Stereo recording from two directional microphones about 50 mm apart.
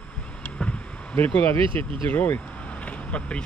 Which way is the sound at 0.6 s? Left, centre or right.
Left.